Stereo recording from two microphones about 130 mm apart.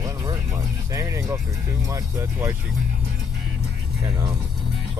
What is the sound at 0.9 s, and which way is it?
Speech, 25° right (ahead or behind).